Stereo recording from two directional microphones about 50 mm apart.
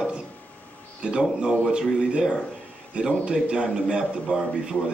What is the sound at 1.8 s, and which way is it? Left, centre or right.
A man's voice, centre.